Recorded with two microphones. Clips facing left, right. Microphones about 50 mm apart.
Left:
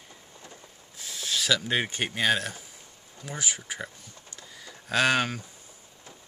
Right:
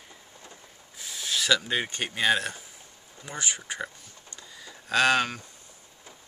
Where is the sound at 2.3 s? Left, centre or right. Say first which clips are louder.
Right 3 dB; centre.